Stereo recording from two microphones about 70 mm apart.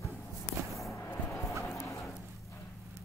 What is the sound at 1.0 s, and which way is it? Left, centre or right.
Music, left.